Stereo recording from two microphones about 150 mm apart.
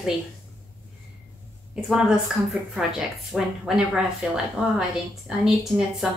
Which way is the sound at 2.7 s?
Centre (ahead or behind).